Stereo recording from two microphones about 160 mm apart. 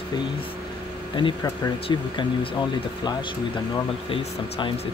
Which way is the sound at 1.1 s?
30° left (ahead or behind).